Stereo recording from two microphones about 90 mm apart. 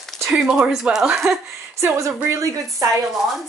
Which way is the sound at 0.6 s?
5° right (ahead or behind).